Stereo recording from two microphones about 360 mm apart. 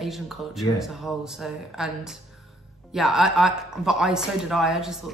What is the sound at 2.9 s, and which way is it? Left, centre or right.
Speech, centre.